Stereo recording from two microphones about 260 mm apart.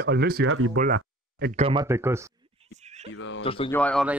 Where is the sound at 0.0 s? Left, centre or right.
Right.